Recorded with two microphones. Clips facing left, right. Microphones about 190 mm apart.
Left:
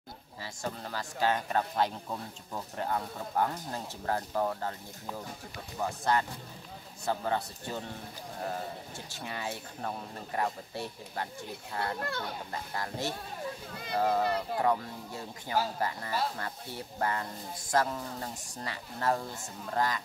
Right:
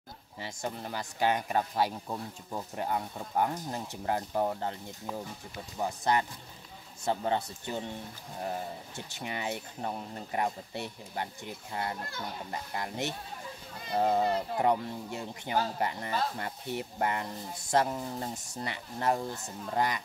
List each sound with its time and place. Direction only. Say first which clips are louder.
0.4 s speech: right 1 dB; 20° right (ahead or behind)
5.8 s speech: right 1 dB; 15° right (ahead or behind)
9.1 s speech: right 3 dB; 20° right (ahead or behind)